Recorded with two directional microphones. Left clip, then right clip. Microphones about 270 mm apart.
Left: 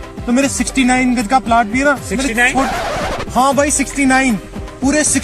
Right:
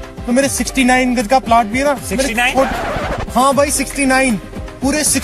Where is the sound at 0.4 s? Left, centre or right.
Right.